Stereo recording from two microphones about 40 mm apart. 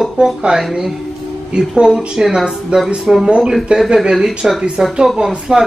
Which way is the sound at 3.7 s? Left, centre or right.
Right.